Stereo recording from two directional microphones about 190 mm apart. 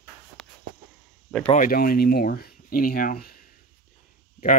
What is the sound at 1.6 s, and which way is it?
Speech, 50° left (ahead or behind).